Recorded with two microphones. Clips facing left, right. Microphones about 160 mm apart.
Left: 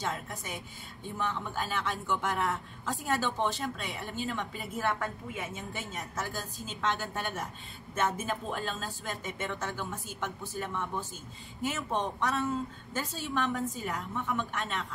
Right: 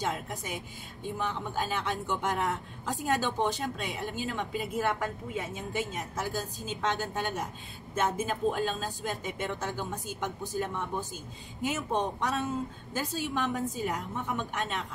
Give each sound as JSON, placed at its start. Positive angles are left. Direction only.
{"t": 0.0, "sound": "a woman's voice", "side_deg": -15}